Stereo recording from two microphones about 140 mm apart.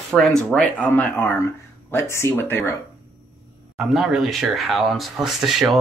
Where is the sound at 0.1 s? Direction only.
Centre (ahead or behind).